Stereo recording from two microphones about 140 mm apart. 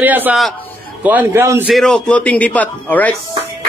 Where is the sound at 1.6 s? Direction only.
Centre (ahead or behind).